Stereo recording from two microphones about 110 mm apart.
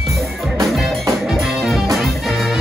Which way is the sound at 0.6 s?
Centre (ahead or behind).